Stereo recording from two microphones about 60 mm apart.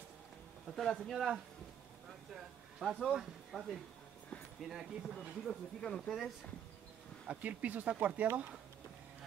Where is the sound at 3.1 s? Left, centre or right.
Centre.